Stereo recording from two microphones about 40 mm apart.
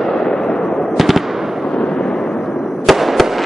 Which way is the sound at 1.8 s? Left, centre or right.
Centre.